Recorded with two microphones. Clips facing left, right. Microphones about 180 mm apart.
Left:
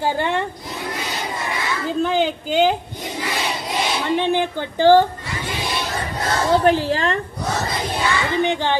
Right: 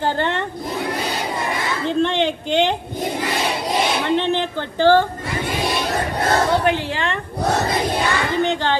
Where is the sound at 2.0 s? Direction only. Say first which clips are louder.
Even; 5° left (ahead or behind).